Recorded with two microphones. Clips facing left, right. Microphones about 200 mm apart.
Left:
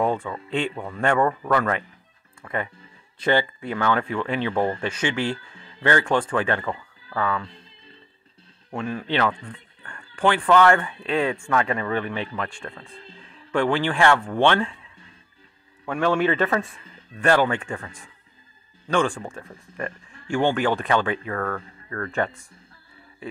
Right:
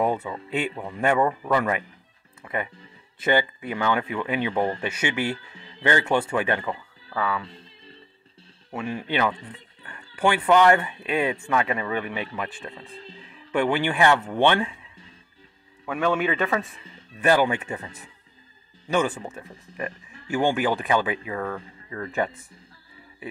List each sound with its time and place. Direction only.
0.0 s speech: 10° right (ahead or behind)
4.8 s speech: 10° right (ahead or behind)
5.5 s music: 20° right (ahead or behind)
6.0 s speech: 10° right (ahead or behind)
9.0 s a man's voice: 15° right (ahead or behind)
13.3 s music: 10° right (ahead or behind)
13.7 s speech: 20° right (ahead or behind)
15.8 s a man's voice: 5° right (ahead or behind)
16.7 s speech: 20° right (ahead or behind)
17.3 s speech: 10° right (ahead or behind)
17.6 s speech: 20° right (ahead or behind)
18.9 s a man's voice: 5° right (ahead or behind)